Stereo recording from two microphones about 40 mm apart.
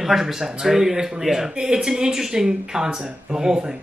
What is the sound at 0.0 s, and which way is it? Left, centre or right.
Speech, centre.